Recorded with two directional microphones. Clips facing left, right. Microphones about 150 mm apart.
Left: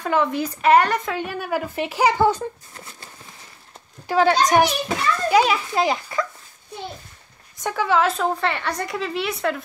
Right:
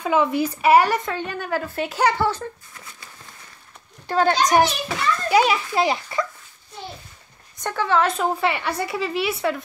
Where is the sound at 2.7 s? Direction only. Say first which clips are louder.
Left 2 dB; 35° left (ahead or behind).